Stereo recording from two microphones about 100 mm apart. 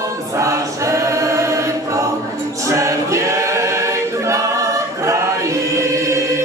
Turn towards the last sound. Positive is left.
turn(degrees=-30)  # may be behind; listen again after turning